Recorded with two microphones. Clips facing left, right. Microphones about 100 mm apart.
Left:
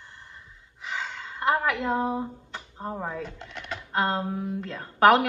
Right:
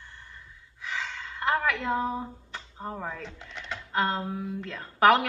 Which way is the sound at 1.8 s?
20° left (ahead or behind).